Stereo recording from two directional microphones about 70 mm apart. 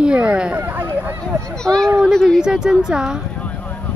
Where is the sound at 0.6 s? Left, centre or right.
Right.